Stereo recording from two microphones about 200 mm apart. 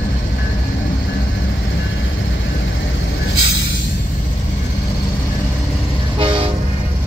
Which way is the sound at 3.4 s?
70° left (ahead or behind).